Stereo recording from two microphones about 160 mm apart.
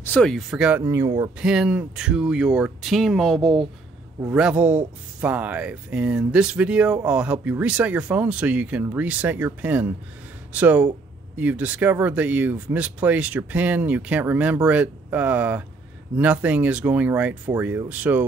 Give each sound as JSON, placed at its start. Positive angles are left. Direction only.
{"t": 0.0, "sound": "speech", "side_deg": 10}
{"t": 0.8, "sound": "speech", "side_deg": -20}
{"t": 1.4, "sound": "speech", "side_deg": -5}